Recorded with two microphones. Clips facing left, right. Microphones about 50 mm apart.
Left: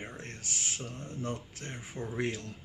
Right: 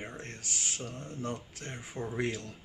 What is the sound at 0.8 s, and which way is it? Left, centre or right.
Speech, centre.